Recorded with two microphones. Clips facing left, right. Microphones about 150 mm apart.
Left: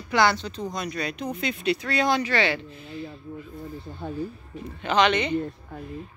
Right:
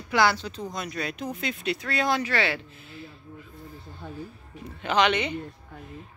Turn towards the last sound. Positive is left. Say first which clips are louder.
# left 2 dB
turn(degrees=-10)  # may be behind; listen again after turning